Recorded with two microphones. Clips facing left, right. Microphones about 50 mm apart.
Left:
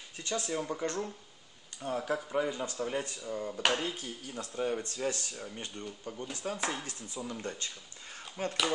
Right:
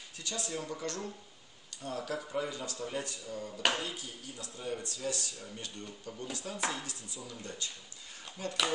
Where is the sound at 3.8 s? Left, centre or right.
Left.